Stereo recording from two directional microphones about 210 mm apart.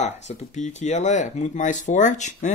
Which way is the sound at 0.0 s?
35° left (ahead or behind).